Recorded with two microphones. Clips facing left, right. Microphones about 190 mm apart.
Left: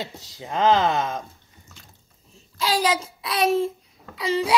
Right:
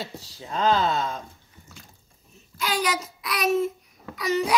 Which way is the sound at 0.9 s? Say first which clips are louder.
Left 2 dB; 90° left.